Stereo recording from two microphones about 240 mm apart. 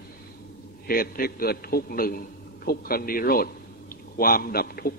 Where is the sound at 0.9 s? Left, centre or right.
Left.